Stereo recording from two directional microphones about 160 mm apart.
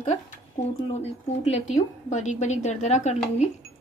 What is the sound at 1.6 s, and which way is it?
A woman's voice, 50° left (ahead or behind).